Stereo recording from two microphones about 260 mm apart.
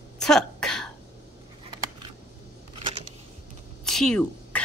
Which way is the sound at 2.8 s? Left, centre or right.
Right.